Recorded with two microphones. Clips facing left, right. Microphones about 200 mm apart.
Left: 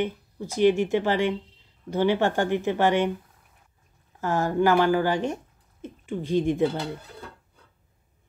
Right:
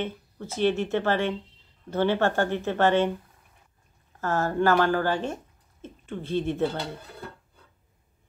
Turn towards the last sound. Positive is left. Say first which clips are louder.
# left 3 dB
turn(degrees=15)  # may be behind; listen again after turning